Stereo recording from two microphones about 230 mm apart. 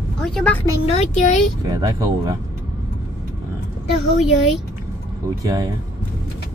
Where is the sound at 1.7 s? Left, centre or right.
Centre.